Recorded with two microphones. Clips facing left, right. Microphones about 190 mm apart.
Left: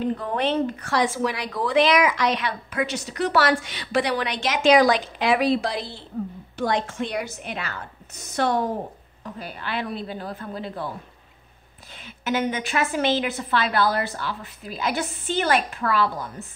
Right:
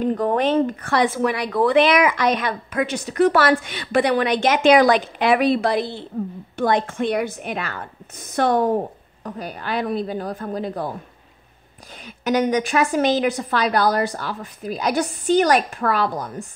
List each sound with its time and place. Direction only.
0.0 s speech: 45° right (ahead or behind)
12.0 s speech: 45° right (ahead or behind)